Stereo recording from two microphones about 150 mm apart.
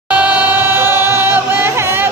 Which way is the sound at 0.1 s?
10° right (ahead or behind).